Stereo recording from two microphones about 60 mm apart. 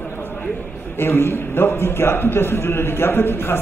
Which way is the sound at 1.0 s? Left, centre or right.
Left.